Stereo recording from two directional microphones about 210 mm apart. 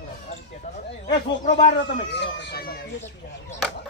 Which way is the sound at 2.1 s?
55° left (ahead or behind).